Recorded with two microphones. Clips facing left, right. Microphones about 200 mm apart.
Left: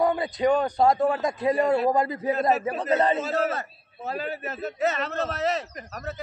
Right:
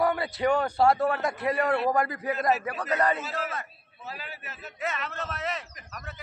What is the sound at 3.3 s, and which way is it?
A man's voice, 40° left (ahead or behind).